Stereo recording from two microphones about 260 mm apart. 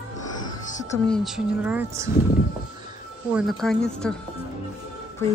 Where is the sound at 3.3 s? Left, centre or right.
Centre.